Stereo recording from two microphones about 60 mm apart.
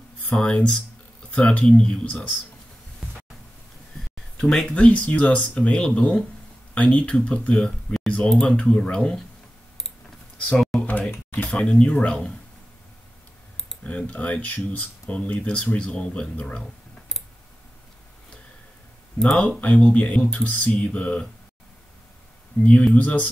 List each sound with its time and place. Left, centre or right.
0.4 s speech: centre
4.4 s speech: centre
10.5 s typing: centre
10.9 s a sound: left
11.5 s speech: centre
13.8 s speech: left
19.1 s speech: centre
19.6 s speech: left
22.6 s speech: left